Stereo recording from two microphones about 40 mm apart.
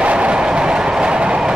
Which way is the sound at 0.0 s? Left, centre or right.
Right.